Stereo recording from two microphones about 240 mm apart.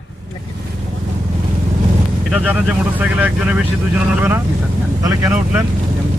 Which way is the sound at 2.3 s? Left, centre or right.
Centre.